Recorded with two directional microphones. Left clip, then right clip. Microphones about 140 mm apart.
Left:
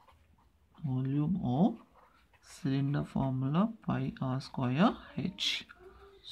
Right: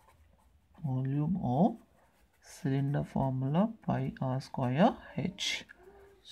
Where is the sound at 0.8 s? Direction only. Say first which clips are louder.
Left 1 dB; 15° right (ahead or behind).